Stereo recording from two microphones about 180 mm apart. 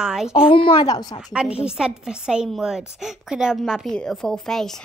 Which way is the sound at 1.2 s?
5° right (ahead or behind).